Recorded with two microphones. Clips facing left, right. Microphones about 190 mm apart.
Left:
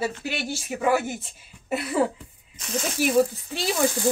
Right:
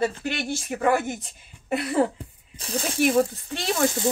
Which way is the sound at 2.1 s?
35° right (ahead or behind).